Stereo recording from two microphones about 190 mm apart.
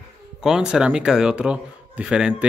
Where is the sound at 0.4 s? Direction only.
5° right (ahead or behind).